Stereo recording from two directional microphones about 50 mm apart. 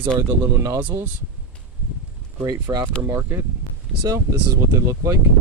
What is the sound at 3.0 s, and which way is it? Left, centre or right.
Speech, right.